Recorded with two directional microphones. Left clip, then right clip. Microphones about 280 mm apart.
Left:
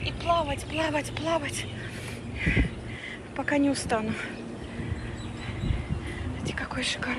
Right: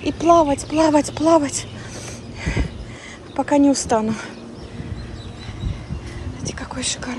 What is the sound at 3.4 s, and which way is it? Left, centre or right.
Speech, centre.